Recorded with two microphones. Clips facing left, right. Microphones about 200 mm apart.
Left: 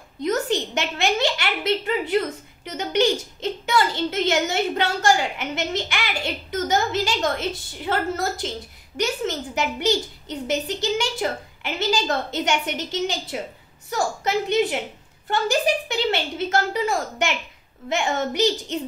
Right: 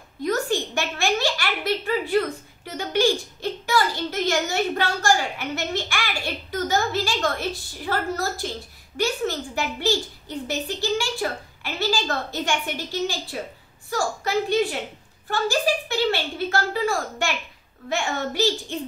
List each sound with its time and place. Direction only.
0.2 s a woman's voice: 20° left (ahead or behind)